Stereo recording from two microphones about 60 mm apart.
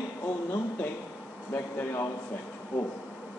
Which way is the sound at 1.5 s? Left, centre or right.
Left.